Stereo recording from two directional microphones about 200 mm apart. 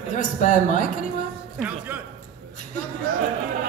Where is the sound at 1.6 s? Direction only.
10° right (ahead or behind).